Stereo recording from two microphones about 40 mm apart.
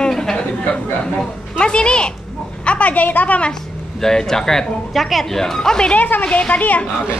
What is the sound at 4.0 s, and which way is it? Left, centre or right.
Speech, centre.